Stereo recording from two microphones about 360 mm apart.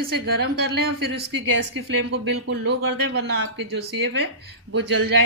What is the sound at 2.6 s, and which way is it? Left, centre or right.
A woman's voice, right.